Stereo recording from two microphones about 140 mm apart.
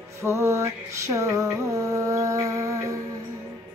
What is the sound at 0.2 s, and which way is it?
Music, 20° right (ahead or behind).